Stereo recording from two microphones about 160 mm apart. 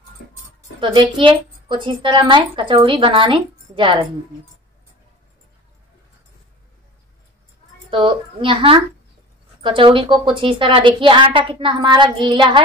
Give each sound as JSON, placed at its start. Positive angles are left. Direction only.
{"t": 0.7, "sound": "a woman's voice", "side_deg": -30}
{"t": 7.9, "sound": "a woman's voice", "side_deg": -30}